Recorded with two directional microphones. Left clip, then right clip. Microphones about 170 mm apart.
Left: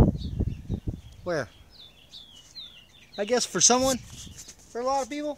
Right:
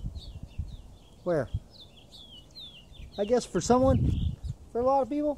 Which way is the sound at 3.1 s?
35° left (ahead or behind).